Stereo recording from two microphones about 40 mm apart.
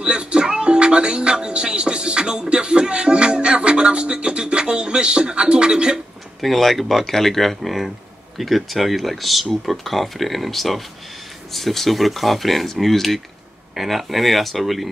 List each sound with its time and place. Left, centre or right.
0.0 s speech: right
6.4 s speech: centre